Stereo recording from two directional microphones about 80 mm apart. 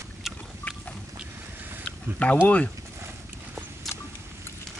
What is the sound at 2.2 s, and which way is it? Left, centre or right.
Speech, centre.